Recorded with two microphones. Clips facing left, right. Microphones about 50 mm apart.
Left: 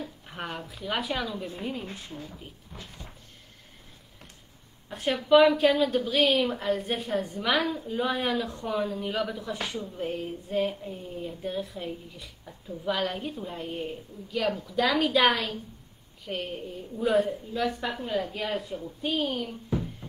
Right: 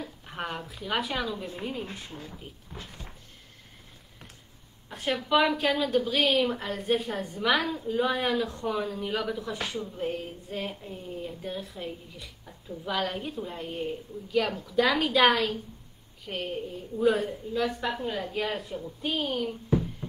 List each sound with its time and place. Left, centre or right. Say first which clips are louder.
0.3 s a woman's voice: right 3 dB; centre
4.8 s a woman's voice: left 2 dB; centre
9.6 s speech: even; right
9.9 s a woman's voice: even; centre
20.0 s a sound: right 4 dB; right